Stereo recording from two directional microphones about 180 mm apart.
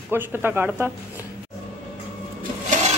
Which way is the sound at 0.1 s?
10° right (ahead or behind).